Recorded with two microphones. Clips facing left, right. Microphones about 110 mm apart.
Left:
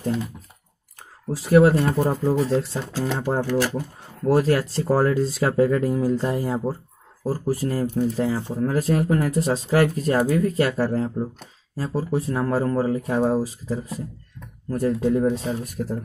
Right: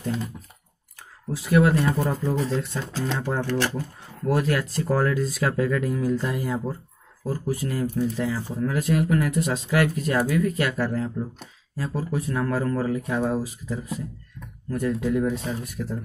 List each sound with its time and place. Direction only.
1.3 s speech: 35° left (ahead or behind)
3.4 s speech: 10° left (ahead or behind)
4.3 s speech: 35° left (ahead or behind)
8.0 s speech: 25° left (ahead or behind)
15.6 s speech: 45° left (ahead or behind)